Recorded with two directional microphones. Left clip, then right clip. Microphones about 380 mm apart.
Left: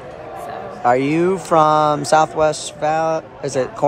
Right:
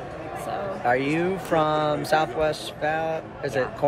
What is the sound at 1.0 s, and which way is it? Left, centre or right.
Speech, centre.